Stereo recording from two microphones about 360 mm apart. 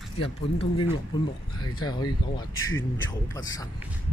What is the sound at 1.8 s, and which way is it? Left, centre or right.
Speech, centre.